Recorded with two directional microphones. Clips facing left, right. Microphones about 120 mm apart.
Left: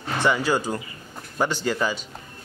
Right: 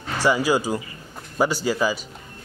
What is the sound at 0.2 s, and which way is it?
Speech, 10° right (ahead or behind).